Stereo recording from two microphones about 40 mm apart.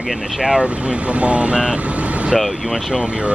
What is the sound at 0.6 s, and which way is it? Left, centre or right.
Speech, right.